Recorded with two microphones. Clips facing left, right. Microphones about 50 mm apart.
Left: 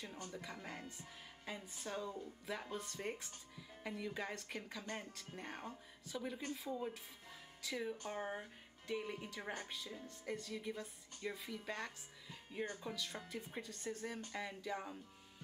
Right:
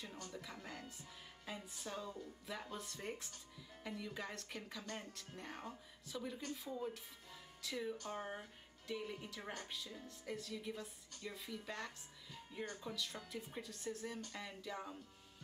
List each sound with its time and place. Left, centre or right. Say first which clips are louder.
0.0 s speech: left 2 dB; centre
3.5 s speech: left 2 dB; centre
4.8 s speech: left 2 dB; centre
5.1 s speech: left 2 dB; centre
10.0 s speech: left 3 dB; centre
12.9 s speech: even; centre